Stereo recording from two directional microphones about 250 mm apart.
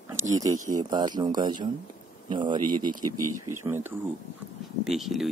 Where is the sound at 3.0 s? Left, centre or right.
Right.